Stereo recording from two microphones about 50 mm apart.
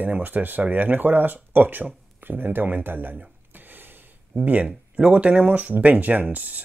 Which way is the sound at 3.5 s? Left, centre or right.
Right.